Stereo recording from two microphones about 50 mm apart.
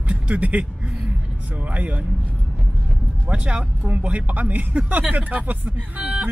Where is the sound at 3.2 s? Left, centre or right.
Right.